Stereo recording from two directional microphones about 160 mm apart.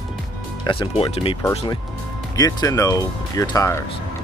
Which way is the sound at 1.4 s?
20° left (ahead or behind).